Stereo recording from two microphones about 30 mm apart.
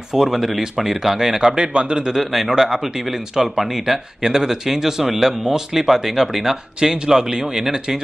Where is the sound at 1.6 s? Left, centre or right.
Right.